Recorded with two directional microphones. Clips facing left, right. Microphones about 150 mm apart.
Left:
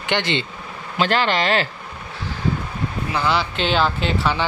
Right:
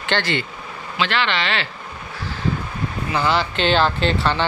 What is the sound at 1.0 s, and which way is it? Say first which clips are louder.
Speech: left 3 dB; 40° left (ahead or behind).